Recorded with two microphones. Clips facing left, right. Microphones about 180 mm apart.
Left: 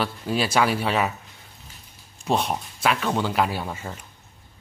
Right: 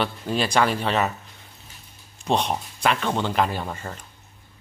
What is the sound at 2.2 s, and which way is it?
Speech, 5° left (ahead or behind).